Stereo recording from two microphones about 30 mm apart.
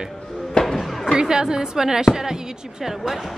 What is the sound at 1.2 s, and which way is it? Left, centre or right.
Speech, right.